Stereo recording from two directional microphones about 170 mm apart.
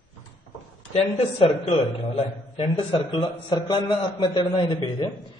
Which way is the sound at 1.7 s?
35° left (ahead or behind).